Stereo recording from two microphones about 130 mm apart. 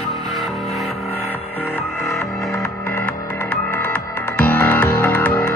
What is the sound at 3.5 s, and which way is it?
Music, 10° left (ahead or behind).